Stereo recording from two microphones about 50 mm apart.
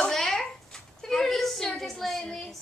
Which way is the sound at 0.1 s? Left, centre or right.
Centre.